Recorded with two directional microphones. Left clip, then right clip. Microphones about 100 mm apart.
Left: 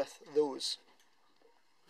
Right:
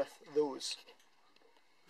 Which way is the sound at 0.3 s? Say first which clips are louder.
Left 3 dB; 15° left (ahead or behind).